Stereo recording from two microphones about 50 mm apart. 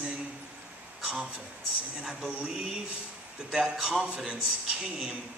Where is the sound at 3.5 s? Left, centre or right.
Centre.